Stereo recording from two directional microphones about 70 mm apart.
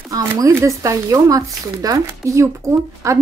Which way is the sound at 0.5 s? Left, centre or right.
Right.